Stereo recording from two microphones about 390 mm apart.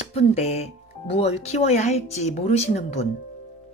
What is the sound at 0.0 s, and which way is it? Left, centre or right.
Speech, centre.